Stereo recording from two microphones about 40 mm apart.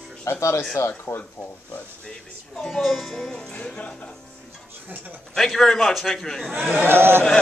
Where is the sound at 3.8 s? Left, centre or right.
Left.